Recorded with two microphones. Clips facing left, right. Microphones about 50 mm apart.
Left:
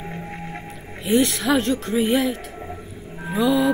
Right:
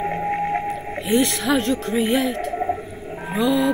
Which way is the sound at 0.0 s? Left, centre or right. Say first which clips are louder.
Right 11 dB; right.